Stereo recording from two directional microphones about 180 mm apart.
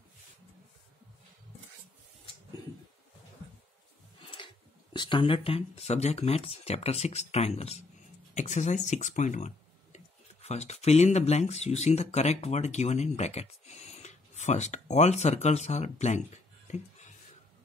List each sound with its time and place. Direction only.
4.4 s dog: 30° left (ahead or behind)
4.9 s speech: 25° left (ahead or behind)
16.6 s a sound: 40° left (ahead or behind)